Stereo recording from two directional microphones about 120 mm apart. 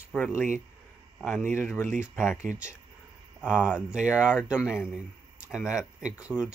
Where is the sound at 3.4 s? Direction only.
10° right (ahead or behind).